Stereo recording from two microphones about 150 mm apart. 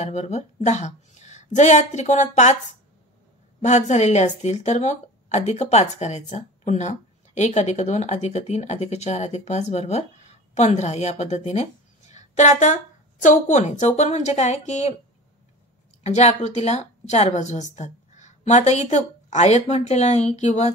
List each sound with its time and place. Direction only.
0.0 s speech: 50° left (ahead or behind)
16.0 s speech: 50° left (ahead or behind)